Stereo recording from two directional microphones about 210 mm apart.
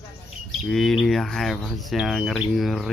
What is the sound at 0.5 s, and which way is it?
Speech, centre (ahead or behind).